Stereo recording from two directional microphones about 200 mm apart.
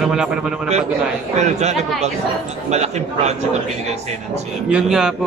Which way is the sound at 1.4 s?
35° right (ahead or behind).